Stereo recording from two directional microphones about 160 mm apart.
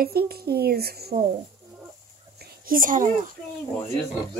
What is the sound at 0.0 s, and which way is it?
A child's voice, 70° right (ahead or behind).